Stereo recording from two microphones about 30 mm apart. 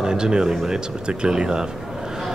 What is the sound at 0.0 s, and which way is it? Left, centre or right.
Speech, right.